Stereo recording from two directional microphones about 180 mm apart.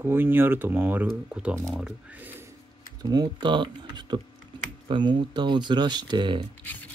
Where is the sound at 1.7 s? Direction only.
5° right (ahead or behind).